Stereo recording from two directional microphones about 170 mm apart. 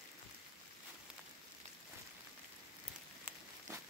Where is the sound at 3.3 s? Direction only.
10° right (ahead or behind).